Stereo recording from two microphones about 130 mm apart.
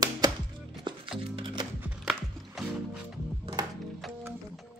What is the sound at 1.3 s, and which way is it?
Music, 40° right (ahead or behind).